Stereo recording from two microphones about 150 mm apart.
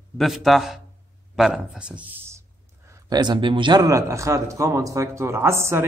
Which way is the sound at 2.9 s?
25° right (ahead or behind).